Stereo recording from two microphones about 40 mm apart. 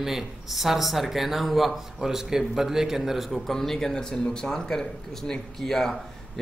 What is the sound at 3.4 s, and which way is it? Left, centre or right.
A man's voice, centre.